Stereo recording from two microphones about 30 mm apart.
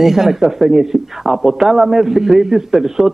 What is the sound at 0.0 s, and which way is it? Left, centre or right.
A man's voice, centre.